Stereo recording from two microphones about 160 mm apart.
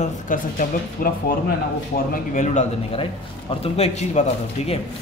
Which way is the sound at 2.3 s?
50° left (ahead or behind).